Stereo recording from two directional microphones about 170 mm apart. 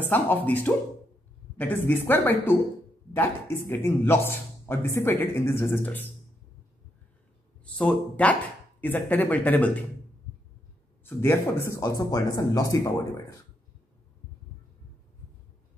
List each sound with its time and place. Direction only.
0.1 s speech: 10° left (ahead or behind)
7.6 s speech: 5° left (ahead or behind)
11.1 s speech: 15° left (ahead or behind)